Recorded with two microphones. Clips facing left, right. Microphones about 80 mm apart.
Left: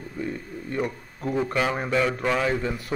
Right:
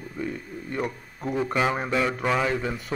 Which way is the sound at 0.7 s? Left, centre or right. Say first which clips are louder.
Left 2 dB; centre.